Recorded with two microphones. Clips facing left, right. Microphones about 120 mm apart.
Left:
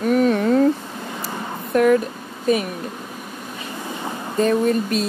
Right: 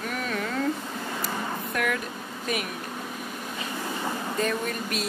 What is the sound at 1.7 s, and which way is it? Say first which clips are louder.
Speech: left 14 dB; 35° left (ahead or behind).